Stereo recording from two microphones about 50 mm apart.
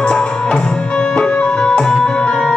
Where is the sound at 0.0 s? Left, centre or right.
Centre.